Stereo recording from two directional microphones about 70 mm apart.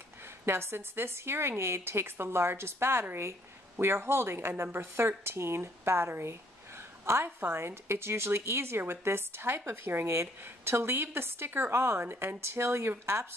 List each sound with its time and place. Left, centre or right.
0.5 s a woman's voice: right